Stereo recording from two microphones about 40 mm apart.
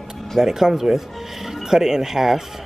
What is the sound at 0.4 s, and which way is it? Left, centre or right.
Speech, centre.